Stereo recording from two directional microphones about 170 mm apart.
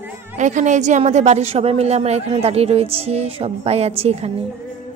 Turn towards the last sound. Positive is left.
turn(degrees=-35)  # may be behind; listen again after turning